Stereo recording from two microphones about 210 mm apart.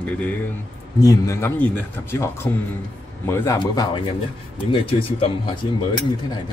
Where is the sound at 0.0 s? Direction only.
5° left (ahead or behind).